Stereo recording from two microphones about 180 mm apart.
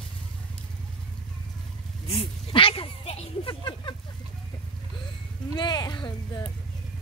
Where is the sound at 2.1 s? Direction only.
30° left (ahead or behind).